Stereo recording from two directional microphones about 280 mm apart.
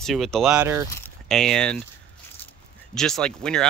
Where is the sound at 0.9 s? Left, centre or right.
Centre.